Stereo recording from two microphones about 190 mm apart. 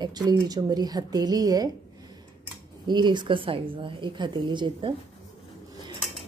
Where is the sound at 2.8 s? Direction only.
25° right (ahead or behind).